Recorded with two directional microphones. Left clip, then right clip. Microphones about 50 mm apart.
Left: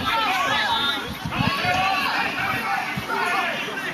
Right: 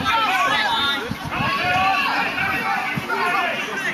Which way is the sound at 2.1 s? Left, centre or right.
Centre.